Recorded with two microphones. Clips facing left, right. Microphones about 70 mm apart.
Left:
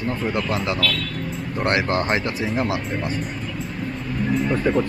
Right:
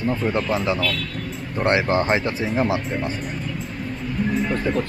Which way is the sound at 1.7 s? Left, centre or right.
Right.